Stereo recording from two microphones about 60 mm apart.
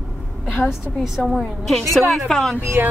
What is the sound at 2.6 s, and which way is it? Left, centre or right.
Speech, right.